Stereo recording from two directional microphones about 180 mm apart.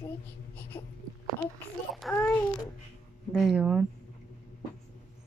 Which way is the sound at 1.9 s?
5° left (ahead or behind).